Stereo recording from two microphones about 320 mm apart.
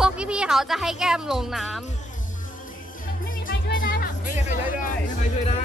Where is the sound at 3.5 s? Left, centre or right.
Left.